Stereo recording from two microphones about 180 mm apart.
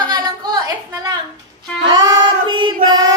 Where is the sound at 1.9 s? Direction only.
25° right (ahead or behind).